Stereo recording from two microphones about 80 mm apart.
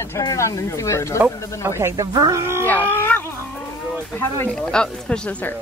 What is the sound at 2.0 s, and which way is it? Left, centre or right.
Speech, right.